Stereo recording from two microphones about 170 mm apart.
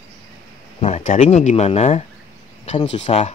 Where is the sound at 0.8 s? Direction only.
40° left (ahead or behind).